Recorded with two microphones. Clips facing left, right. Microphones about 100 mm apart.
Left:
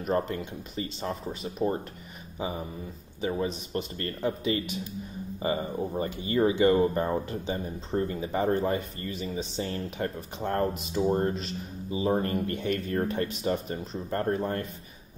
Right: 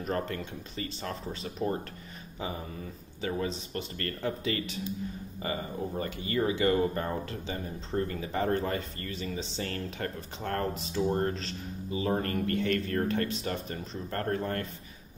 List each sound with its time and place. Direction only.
0.0 s speech: 20° left (ahead or behind)